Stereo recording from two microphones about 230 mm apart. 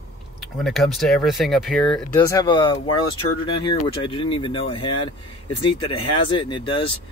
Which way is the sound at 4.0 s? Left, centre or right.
Left.